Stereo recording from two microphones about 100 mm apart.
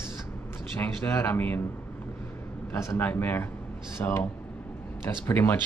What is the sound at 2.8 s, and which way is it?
Speech, 20° left (ahead or behind).